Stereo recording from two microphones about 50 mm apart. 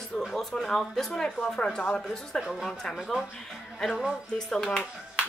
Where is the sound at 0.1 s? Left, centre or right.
Centre.